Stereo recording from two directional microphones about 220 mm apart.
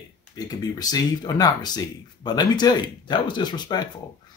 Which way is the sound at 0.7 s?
20° left (ahead or behind).